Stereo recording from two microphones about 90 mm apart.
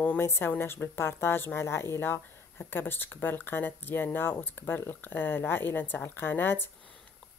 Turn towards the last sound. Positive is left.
turn(degrees=25)  # may be behind; listen again after turning